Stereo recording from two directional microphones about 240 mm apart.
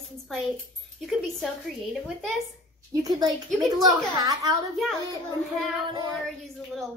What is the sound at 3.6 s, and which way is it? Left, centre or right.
A woman's voice, centre.